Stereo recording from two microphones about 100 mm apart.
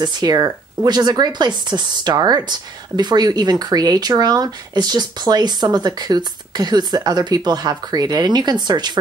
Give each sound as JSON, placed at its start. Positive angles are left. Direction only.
{"t": 0.0, "sound": "speech", "side_deg": -45}